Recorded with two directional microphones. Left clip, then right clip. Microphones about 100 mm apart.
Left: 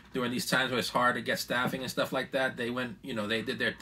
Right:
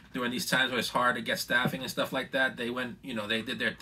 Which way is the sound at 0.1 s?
35° right (ahead or behind).